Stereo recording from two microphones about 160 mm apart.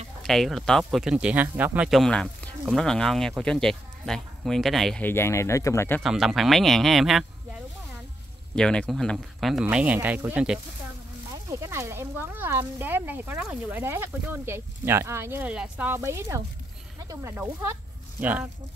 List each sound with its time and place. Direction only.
0.2 s speech: centre (ahead or behind)
5.0 s speech: 15° left (ahead or behind)
6.0 s speech: centre (ahead or behind)
8.5 s speech: 5° left (ahead or behind)
11.3 s speech: 20° right (ahead or behind)